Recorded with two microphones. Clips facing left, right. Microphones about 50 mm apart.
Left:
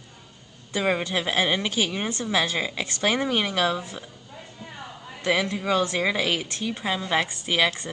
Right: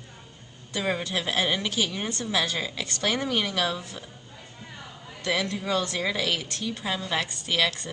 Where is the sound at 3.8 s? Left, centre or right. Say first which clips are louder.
Left 3 dB; centre.